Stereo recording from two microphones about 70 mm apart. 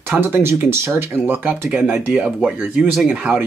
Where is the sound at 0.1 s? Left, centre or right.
Right.